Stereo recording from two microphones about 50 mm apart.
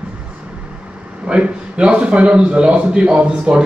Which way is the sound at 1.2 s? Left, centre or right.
Right.